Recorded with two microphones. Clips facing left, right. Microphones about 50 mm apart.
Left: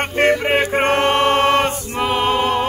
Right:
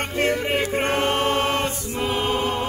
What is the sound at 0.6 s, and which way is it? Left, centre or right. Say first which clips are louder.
Choir: left 6 dB; left.